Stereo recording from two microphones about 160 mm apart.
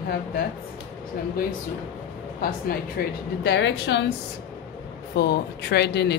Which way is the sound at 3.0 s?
70° left (ahead or behind).